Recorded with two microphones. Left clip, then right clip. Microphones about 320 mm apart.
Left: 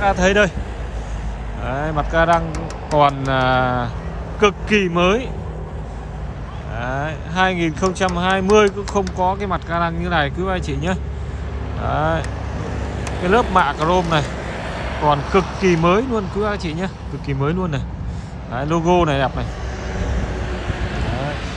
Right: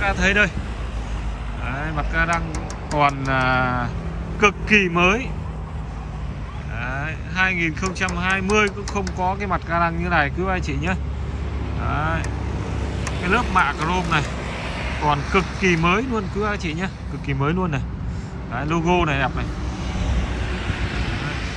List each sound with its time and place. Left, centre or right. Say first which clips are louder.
0.0 s speech: left 3 dB; centre
1.7 s speech: left 6 dB; centre
6.8 s speech: left 4 dB; centre
13.2 s speech: left 4 dB; centre
14.3 s vehicle: left 2 dB; left
15.6 s speech: left 3 dB; centre
19.9 s vehicle: left 3 dB; left